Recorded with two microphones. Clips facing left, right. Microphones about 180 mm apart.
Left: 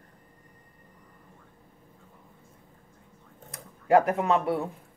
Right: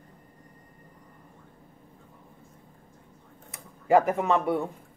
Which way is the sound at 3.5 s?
Centre (ahead or behind).